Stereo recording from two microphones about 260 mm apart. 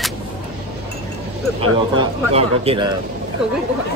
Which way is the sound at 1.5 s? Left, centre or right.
Right.